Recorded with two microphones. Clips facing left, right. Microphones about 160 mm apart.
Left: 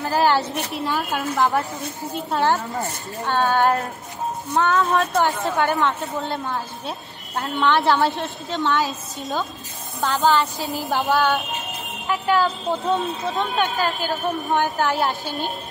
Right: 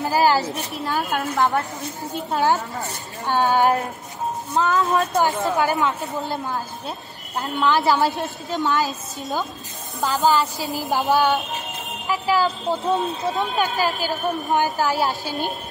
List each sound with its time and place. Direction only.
0.0 s speech: 5° right (ahead or behind)
3.3 s speech: 15° right (ahead or behind)
11.1 s speech: 15° right (ahead or behind)
12.1 s speech: 5° right (ahead or behind)